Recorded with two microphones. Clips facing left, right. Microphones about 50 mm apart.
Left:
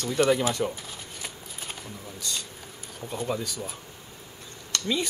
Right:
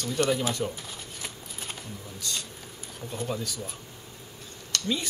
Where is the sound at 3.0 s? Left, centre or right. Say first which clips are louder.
Left 2 dB; centre.